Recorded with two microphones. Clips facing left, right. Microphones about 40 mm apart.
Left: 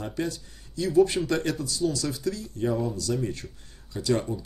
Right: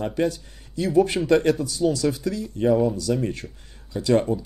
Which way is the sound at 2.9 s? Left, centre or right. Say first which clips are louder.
Right 4 dB; right.